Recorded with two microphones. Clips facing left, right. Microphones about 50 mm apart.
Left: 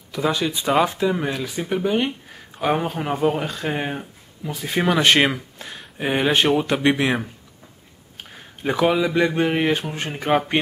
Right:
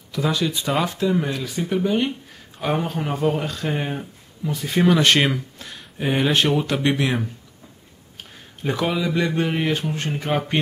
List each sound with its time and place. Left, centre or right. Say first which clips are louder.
0.1 s speech: left 1 dB; centre